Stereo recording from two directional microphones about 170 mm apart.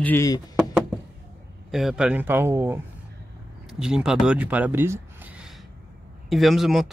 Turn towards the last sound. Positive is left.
turn(degrees=0)  # may be behind; listen again after turning